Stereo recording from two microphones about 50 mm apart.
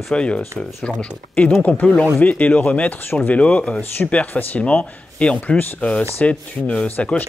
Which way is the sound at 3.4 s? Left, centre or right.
Left.